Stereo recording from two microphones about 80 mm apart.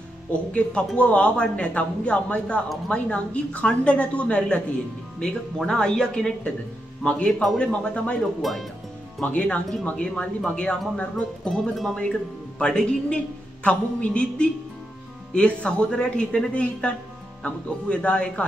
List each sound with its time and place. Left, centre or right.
0.3 s speech: centre
5.6 s speech: centre
8.4 s speech: centre
9.2 s speech: centre